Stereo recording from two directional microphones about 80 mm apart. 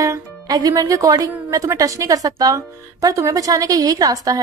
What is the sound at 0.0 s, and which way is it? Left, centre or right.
Speech, right.